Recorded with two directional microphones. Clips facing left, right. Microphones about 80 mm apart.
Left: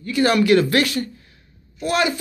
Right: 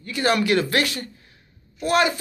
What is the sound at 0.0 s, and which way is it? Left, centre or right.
Speech, right.